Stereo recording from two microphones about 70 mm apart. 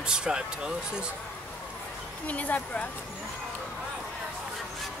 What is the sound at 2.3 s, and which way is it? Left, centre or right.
Speech, left.